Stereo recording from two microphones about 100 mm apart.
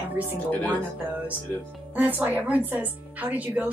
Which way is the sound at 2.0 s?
15° right (ahead or behind).